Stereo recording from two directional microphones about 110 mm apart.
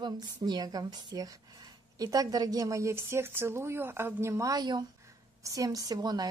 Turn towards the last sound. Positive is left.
turn(degrees=-35)  # may be behind; listen again after turning